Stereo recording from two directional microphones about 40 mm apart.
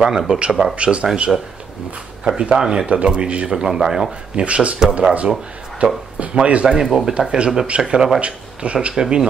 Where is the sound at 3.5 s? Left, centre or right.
Centre.